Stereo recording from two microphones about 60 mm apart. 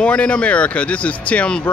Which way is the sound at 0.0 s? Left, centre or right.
Left.